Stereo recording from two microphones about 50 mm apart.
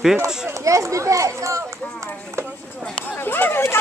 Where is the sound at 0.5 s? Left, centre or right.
Right.